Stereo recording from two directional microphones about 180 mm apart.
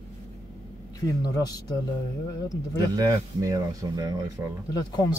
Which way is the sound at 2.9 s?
20° right (ahead or behind).